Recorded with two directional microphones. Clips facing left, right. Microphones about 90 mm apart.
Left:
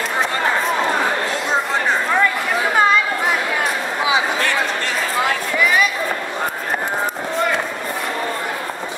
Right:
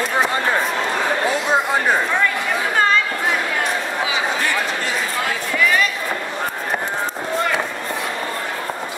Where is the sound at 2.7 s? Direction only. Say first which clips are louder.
Left 2 dB; 10° left (ahead or behind).